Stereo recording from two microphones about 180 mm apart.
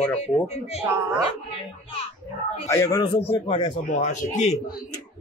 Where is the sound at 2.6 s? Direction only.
15° left (ahead or behind).